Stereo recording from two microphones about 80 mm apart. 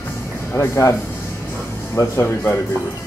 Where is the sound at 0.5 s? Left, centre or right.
Left.